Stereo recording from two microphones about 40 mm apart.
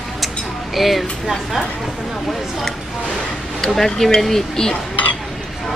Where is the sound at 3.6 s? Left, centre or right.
Centre.